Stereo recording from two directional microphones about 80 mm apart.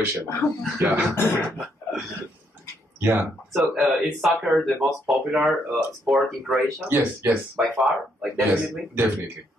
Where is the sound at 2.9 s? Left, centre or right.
Right.